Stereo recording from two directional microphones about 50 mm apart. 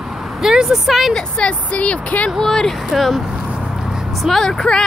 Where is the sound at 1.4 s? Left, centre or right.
Left.